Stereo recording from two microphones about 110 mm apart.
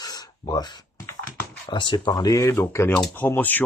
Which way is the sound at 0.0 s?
35° left (ahead or behind).